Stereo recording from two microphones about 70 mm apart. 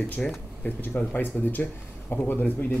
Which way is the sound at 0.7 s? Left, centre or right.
Left.